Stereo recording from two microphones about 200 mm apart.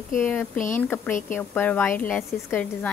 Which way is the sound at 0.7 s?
10° left (ahead or behind).